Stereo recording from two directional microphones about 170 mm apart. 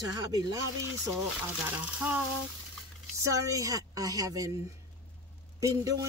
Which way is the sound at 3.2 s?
20° right (ahead or behind).